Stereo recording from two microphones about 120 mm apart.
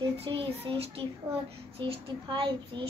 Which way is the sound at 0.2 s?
50° right (ahead or behind).